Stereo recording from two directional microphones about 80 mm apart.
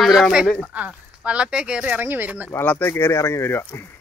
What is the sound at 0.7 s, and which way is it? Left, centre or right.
Speech, centre.